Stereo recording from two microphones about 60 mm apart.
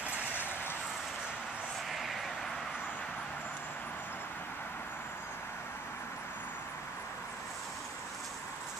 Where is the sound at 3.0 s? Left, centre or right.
Centre.